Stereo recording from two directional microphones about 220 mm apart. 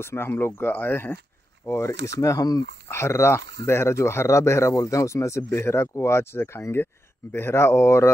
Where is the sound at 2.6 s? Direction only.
50° right (ahead or behind).